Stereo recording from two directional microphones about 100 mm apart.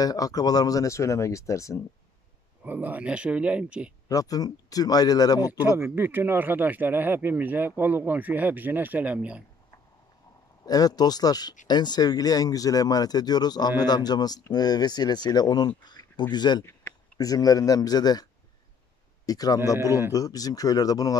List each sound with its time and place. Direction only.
0.0 s speech: 40° left (ahead or behind)
2.6 s speech: 15° right (ahead or behind)
4.1 s speech: 35° left (ahead or behind)
5.8 s speech: 25° right (ahead or behind)
10.6 s speech: 40° left (ahead or behind)
19.2 s speech: 40° left (ahead or behind)